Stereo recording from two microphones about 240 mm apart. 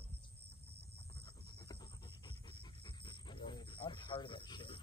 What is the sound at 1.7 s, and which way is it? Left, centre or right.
Pant, centre.